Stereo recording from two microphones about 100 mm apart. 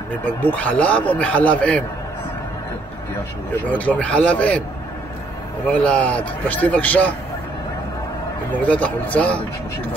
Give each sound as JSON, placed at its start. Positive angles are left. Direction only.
{"t": 0.2, "sound": "a man's voice", "side_deg": 15}
{"t": 3.6, "sound": "a man's voice", "side_deg": 15}
{"t": 5.7, "sound": "a man's voice", "side_deg": 10}
{"t": 8.5, "sound": "a man's voice", "side_deg": 15}